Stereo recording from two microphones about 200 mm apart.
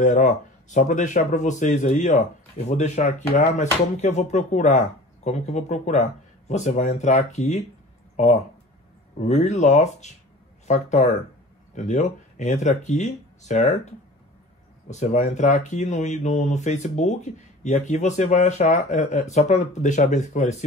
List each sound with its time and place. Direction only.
0.0 s speech: 40° left (ahead or behind)
9.2 s speech: 35° left (ahead or behind)